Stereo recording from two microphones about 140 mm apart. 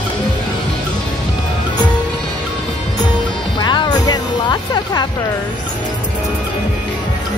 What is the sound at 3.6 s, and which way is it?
Music, 30° left (ahead or behind).